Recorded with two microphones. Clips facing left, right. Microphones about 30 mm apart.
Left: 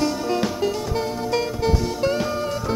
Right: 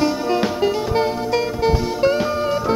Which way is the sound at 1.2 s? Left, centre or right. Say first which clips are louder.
Right 3 dB; centre.